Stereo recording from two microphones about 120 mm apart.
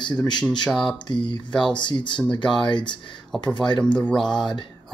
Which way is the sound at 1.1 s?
40° left (ahead or behind).